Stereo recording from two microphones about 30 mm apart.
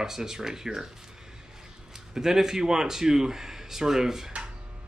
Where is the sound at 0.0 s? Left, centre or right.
Centre.